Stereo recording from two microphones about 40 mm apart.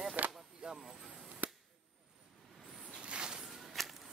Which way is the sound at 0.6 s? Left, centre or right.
Right.